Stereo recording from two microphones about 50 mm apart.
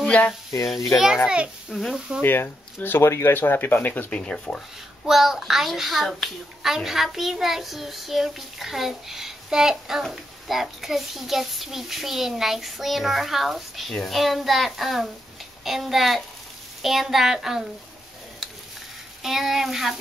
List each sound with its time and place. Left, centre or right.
0.5 s a child's voice: left
0.9 s a child's voice: centre
1.2 s a child's voice: right
1.7 s a child's voice: centre
2.2 s speech: left
3.0 s speech: left
3.3 s speech: left
4.1 s speech: centre
5.0 s a child's voice: centre
19.2 s speech: centre